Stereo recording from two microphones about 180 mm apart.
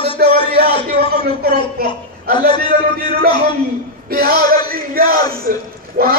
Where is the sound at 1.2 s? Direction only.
60° right (ahead or behind).